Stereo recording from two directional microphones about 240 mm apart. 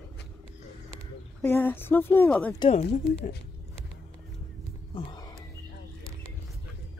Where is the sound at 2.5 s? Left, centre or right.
Left.